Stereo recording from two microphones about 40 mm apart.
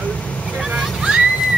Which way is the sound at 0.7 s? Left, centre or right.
Right.